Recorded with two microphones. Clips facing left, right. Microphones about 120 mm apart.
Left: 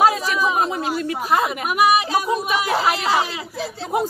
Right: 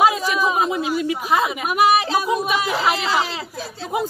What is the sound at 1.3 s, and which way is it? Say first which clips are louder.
Speech: left 1 dB; centre (ahead or behind).